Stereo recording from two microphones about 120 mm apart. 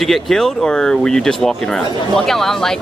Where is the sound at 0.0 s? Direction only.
Centre (ahead or behind).